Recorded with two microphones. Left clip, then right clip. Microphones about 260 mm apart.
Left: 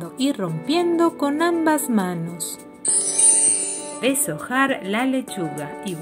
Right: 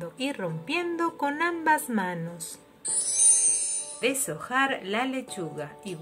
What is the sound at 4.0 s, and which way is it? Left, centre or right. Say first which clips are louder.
Speech: left 6 dB; centre.